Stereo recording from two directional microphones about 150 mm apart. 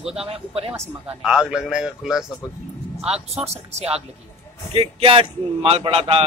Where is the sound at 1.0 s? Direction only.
5° right (ahead or behind).